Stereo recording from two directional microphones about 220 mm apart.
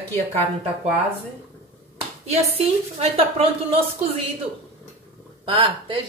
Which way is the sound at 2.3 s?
30° right (ahead or behind).